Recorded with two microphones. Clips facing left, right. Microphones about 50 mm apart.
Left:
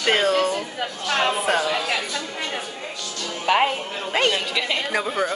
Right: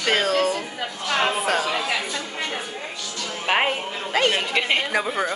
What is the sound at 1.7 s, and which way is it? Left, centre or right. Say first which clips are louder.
Chatter: even; right.